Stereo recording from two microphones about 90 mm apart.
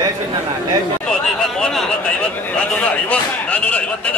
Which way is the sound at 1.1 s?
10° left (ahead or behind).